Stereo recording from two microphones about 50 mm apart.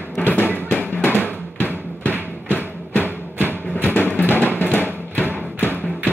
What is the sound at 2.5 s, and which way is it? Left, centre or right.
Music, left.